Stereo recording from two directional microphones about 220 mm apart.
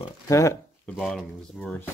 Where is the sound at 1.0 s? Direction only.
Centre (ahead or behind).